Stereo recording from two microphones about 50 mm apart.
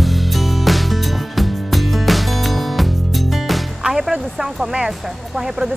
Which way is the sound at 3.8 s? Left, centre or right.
Centre.